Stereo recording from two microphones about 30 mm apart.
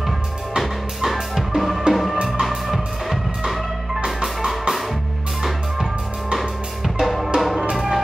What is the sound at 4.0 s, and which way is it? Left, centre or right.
Music, right.